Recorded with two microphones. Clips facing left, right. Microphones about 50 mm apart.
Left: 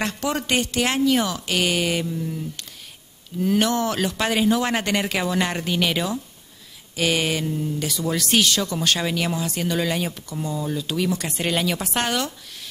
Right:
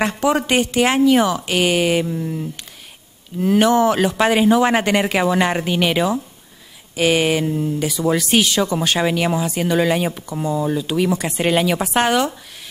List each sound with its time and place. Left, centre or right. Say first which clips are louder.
0.0 s speech: right 7 dB; centre